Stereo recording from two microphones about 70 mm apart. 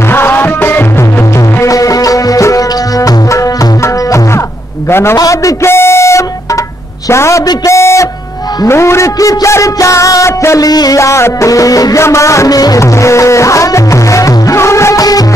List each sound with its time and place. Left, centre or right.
0.1 s music: left
1.6 s music: left
5.1 s a sound: left
7.1 s music: left
7.6 s a sound: left
8.6 s music: left
10.6 s music: left
11.0 s music: left
12.0 s music: left
12.8 s music: left